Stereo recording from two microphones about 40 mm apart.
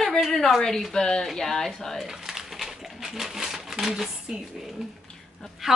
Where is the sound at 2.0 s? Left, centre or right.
Centre.